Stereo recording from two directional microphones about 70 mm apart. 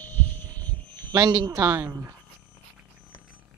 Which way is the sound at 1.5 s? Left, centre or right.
Right.